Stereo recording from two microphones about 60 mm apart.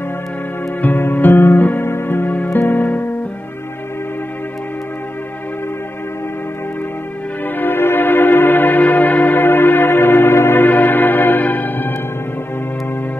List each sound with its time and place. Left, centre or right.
0.8 s music: left
7.4 s music: left